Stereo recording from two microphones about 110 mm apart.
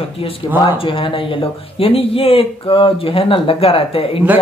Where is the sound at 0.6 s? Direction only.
50° left (ahead or behind).